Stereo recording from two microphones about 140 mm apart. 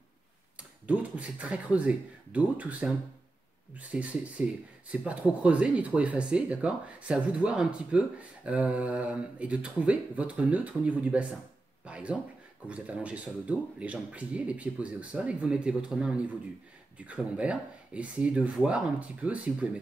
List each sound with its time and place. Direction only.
0.8 s speech: 10° right (ahead or behind)
11.8 s a sound: 10° right (ahead or behind)
12.6 s speech: 10° right (ahead or behind)